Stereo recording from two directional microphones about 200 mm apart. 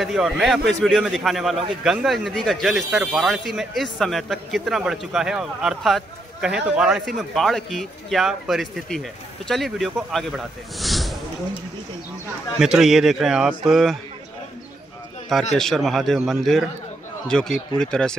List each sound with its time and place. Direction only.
0.0 s a man's voice: centre (ahead or behind)
12.5 s a man's voice: 5° right (ahead or behind)
15.5 s a man's voice: centre (ahead or behind)